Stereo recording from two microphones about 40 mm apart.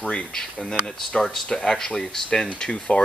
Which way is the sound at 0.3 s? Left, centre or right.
Centre.